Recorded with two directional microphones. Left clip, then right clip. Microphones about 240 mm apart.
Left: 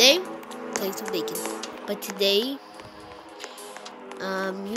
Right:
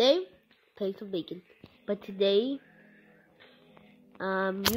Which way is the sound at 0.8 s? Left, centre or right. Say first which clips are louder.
Left 3 dB; left.